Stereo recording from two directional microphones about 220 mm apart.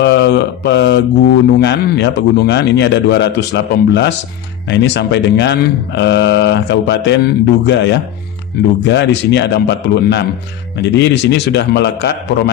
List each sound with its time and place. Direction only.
0.0 s speech: 50° left (ahead or behind)